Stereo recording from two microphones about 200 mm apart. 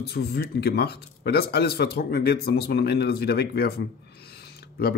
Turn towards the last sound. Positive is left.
turn(degrees=50)  # may be behind; listen again after turning